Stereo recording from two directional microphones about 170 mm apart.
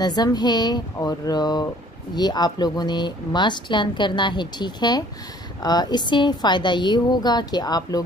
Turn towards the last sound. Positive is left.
turn(degrees=25)  # may be behind; listen again after turning